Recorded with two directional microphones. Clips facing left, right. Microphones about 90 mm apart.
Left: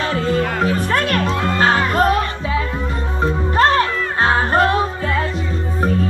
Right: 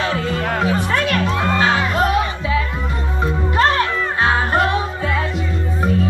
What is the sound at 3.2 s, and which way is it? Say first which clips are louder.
Music: left 2 dB; 35° left (ahead or behind).